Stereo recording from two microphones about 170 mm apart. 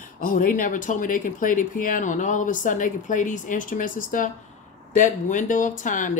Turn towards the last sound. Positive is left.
turn(degrees=50)  # may be behind; listen again after turning